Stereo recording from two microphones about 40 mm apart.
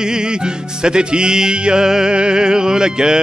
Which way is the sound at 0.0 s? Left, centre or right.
Centre.